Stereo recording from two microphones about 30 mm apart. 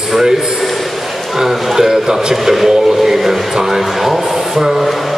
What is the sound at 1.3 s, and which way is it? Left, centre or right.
Speech, centre.